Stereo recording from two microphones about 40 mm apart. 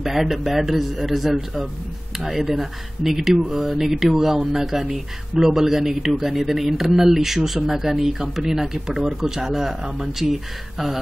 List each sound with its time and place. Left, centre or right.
0.0 s a man's voice: centre